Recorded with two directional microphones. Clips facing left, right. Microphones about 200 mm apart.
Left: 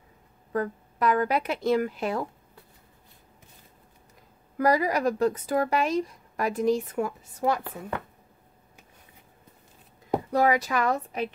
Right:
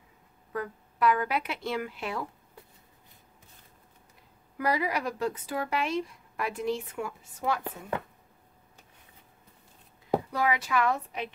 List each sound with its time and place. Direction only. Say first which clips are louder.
0.5 s speech: left 6 dB; 40° left (ahead or behind)
4.6 s speech: left 6 dB; 40° left (ahead or behind)
10.3 s speech: left 8 dB; 40° left (ahead or behind)